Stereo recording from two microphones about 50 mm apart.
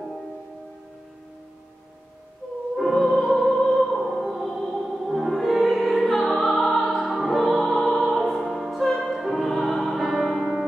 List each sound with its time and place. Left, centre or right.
2.7 s music: centre
6.2 s music: centre
6.5 s music: centre